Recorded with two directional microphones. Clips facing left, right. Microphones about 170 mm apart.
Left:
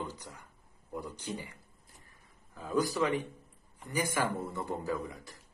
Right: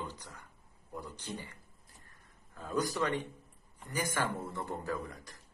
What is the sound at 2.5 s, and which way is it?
Speech, 5° left (ahead or behind).